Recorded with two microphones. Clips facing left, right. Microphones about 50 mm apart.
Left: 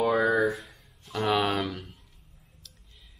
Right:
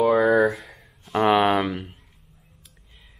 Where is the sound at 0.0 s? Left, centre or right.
Right.